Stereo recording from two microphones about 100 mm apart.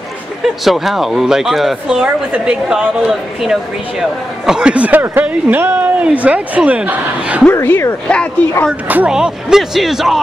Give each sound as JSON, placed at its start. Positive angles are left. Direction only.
{"t": 0.7, "sound": "a woman's voice", "side_deg": 0}
{"t": 7.6, "sound": "speech", "side_deg": 20}
{"t": 8.8, "sound": "speech", "side_deg": -15}
{"t": 9.1, "sound": "a woman's voice", "side_deg": -5}